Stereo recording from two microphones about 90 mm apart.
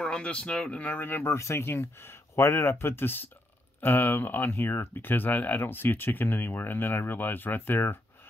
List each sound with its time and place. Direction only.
0.0 s speech: 10° left (ahead or behind)